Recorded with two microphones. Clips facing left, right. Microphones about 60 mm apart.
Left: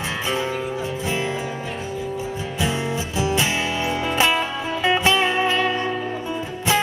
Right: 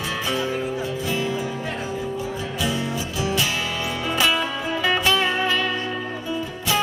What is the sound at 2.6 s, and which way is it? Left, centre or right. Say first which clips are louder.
Music: left 2 dB; left.